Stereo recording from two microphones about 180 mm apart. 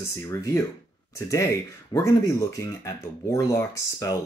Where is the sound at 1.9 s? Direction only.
20° left (ahead or behind).